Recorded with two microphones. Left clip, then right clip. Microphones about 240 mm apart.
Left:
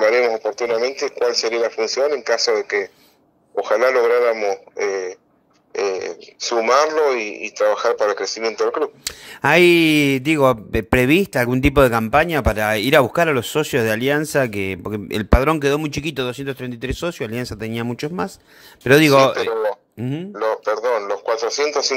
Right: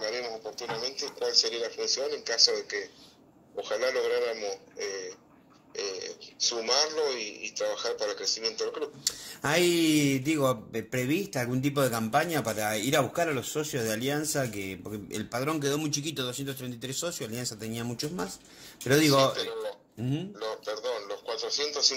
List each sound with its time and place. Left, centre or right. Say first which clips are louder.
0.0 s radio: left 18 dB; left
0.3 s radio: left 17 dB; left
0.6 s speech: left 14 dB; left
10.4 s speech: left 12 dB; left
11.9 s speech: left 11 dB; left
12.7 s speech: left 13 dB; left
13.7 s speech: left 13 dB; left
15.5 s speech: left 10 dB; left
16.5 s speech: left 10 dB; left
17.8 s speech: left 9 dB; left
19.0 s speech: left 11 dB; left